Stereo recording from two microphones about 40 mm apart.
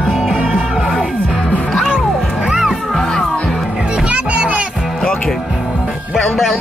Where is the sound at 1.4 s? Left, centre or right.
Left.